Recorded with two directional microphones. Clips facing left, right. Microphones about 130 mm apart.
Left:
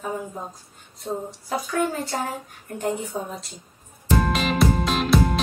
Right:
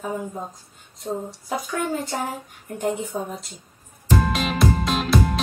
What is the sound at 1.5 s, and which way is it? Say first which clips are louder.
Speech: left 1 dB; 20° right (ahead or behind).